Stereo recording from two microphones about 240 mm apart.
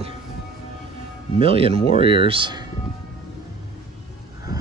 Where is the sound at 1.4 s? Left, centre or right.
Right.